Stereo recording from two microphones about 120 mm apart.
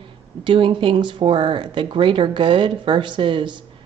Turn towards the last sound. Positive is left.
turn(degrees=-45)  # may be behind; listen again after turning